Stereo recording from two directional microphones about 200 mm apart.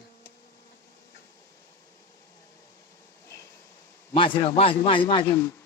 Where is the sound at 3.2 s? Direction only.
15° left (ahead or behind).